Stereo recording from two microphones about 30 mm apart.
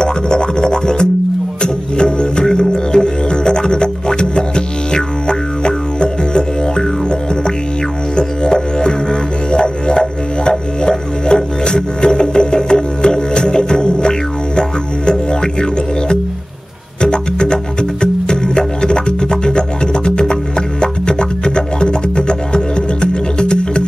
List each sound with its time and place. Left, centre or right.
0.0 s music: left
8.5 s music: left